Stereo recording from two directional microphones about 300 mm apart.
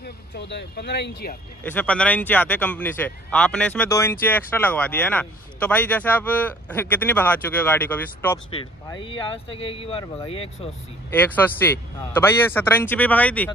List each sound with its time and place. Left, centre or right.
0.0 s speech: left
1.6 s speech: centre
11.1 s speech: centre